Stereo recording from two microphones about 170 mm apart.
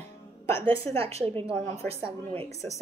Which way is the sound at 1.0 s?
35° right (ahead or behind).